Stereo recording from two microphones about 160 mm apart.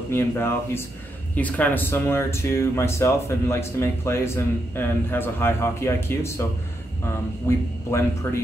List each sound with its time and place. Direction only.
0.1 s speech: 15° left (ahead or behind)
7.4 s speech: 15° left (ahead or behind)